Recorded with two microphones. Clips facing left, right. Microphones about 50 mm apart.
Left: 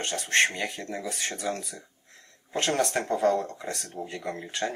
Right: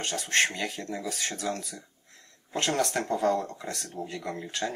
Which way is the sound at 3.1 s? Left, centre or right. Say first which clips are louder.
Left 2 dB; centre.